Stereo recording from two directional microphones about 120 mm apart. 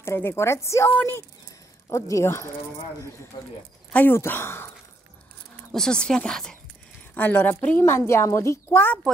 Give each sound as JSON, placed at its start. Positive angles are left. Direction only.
{"t": 0.0, "sound": "a woman's voice", "side_deg": 20}
{"t": 3.3, "sound": "speech", "side_deg": 40}
{"t": 3.9, "sound": "a woman's voice", "side_deg": 15}
{"t": 5.7, "sound": "speech", "side_deg": 5}
{"t": 7.2, "sound": "a woman's voice", "side_deg": 15}